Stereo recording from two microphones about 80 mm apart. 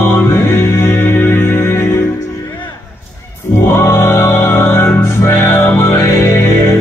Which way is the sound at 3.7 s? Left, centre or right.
Left.